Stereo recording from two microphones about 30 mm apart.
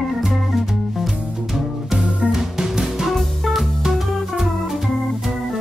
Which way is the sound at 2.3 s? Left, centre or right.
Centre.